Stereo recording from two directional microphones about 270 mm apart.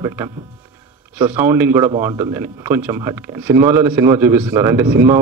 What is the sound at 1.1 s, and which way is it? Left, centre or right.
Speech, centre.